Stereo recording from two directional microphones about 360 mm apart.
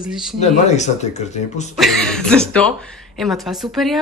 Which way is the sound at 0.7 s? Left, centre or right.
Centre.